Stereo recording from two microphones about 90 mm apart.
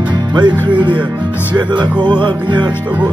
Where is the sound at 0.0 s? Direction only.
55° right (ahead or behind).